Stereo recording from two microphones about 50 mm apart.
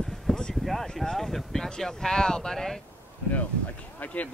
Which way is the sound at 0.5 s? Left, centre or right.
Centre.